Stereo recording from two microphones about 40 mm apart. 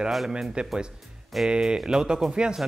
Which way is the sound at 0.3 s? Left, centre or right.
Right.